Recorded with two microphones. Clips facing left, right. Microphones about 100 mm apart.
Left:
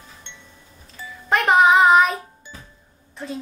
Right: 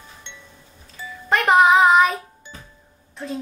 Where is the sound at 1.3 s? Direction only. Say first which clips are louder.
Even; centre (ahead or behind).